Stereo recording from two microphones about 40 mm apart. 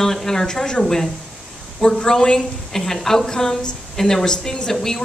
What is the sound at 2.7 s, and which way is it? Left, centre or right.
A woman's voice, centre.